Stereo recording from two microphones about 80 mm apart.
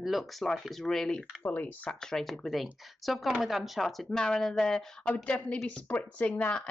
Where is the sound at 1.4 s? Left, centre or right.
Centre.